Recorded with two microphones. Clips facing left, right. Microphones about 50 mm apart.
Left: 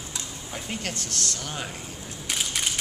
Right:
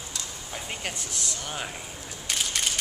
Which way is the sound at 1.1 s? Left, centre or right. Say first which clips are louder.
Left 2 dB; centre.